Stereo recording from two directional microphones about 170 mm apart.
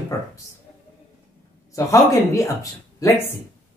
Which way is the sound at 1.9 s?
20° left (ahead or behind).